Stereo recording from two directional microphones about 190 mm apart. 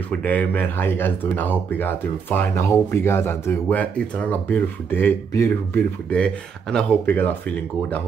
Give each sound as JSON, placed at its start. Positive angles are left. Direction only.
{"t": 0.1, "sound": "speech", "side_deg": 10}